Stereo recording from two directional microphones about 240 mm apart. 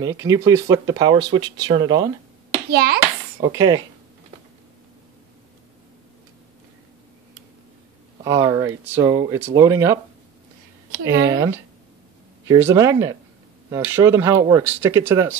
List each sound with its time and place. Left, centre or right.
0.0 s speech: centre
2.7 s a child's voice: right
3.3 s speech: centre
8.2 s speech: centre
10.9 s speech: right
11.2 s speech: centre